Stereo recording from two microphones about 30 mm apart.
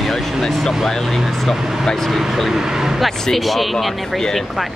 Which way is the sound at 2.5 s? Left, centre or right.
Centre.